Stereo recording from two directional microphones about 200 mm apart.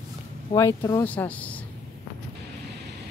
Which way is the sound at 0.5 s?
15° left (ahead or behind).